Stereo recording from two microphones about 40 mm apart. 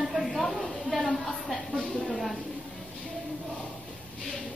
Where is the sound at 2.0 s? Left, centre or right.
Centre.